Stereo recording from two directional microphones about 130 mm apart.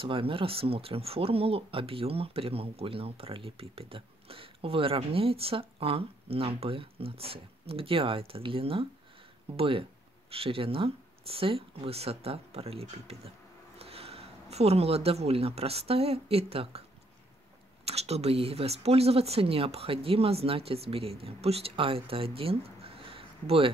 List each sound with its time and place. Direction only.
0.0 s speech: 45° right (ahead or behind)
17.8 s speech: 55° right (ahead or behind)